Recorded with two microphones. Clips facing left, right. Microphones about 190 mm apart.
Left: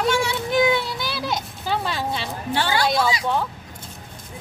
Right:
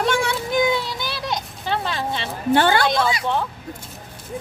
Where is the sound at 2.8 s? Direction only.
Centre (ahead or behind).